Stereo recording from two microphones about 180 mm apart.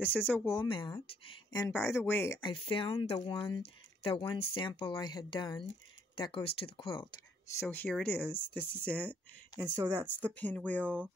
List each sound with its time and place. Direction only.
0.2 s speech: 10° left (ahead or behind)
0.6 s speech: 25° left (ahead or behind)
1.7 s speech: 15° left (ahead or behind)
2.4 s speech: 30° left (ahead or behind)
7.7 s speech: 10° left (ahead or behind)
9.6 s speech: 15° right (ahead or behind)
10.0 s speech: 10° left (ahead or behind)